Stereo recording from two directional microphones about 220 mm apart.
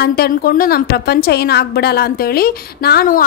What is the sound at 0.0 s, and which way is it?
A woman's voice, 45° left (ahead or behind).